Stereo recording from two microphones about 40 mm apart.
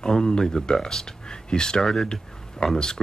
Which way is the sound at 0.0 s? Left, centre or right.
Centre.